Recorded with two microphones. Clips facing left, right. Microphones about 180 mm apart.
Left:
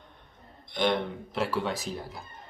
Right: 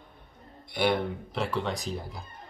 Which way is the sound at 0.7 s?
10° right (ahead or behind).